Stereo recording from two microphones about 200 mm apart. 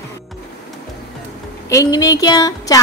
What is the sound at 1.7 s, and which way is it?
Speech, 20° left (ahead or behind).